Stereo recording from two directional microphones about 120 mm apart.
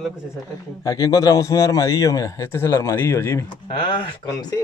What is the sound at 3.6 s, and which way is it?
Speech, 50° left (ahead or behind).